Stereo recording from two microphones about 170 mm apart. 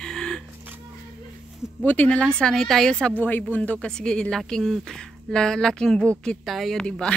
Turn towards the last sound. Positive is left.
turn(degrees=5)  # may be behind; listen again after turning